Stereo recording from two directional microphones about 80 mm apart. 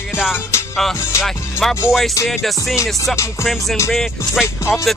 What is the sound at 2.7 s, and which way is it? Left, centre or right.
Music, left.